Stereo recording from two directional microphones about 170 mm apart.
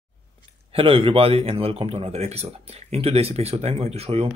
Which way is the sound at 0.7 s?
30° right (ahead or behind).